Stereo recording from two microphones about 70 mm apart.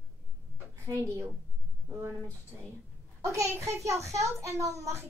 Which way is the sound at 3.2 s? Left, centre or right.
Right.